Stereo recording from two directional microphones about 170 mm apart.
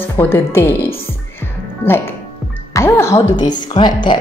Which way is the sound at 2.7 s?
15° left (ahead or behind).